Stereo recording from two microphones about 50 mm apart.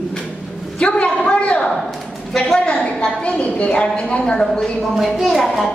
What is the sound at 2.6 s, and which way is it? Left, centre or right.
A woman's voice, left.